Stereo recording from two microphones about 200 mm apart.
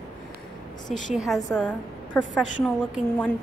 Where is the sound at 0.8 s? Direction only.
40° left (ahead or behind).